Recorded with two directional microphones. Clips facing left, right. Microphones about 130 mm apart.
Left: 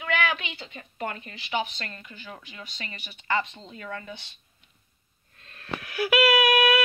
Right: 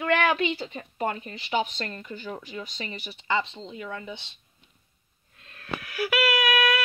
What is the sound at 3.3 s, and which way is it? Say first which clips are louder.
Speech: even; 20° right (ahead or behind).